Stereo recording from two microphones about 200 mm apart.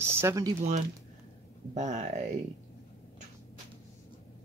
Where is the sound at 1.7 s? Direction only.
35° right (ahead or behind).